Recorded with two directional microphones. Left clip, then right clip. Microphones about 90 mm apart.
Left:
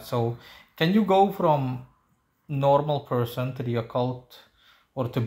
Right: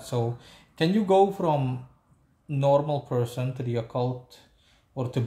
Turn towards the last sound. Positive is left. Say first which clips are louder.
# left 3 dB
turn(degrees=-25)  # may be behind; listen again after turning